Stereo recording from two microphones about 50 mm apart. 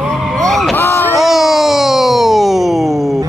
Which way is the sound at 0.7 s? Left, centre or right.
Left.